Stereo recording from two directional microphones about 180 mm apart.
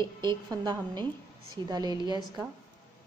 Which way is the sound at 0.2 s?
25° right (ahead or behind).